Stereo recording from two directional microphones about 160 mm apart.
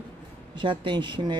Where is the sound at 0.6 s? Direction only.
30° right (ahead or behind).